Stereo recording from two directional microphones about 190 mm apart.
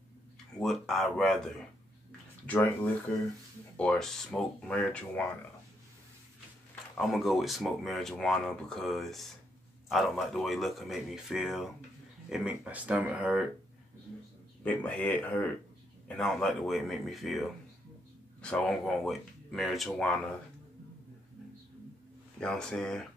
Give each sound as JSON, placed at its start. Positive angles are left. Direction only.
{"t": 0.6, "sound": "speech", "side_deg": 0}
{"t": 6.7, "sound": "speech", "side_deg": 0}
{"t": 14.6, "sound": "speech", "side_deg": 5}
{"t": 22.4, "sound": "speech", "side_deg": 5}